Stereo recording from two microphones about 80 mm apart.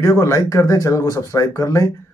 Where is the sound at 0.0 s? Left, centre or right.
Left.